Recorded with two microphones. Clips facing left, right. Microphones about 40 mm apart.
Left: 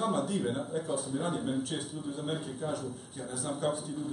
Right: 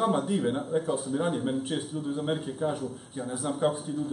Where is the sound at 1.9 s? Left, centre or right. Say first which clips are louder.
Right 6 dB; right.